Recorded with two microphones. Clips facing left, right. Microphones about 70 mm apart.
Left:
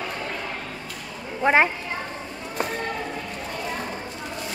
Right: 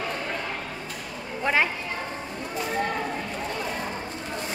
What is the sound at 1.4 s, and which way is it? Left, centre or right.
Speech, left.